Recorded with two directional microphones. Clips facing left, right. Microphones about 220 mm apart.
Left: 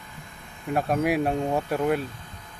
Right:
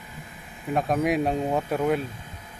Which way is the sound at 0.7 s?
5° left (ahead or behind).